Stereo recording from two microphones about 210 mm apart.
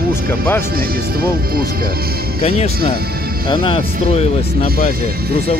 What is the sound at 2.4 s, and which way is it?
Speech, 30° left (ahead or behind).